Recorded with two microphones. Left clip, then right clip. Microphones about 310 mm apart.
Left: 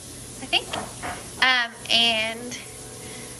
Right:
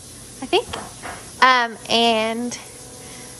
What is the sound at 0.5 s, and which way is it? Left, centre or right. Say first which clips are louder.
A woman's voice: right 4 dB; right.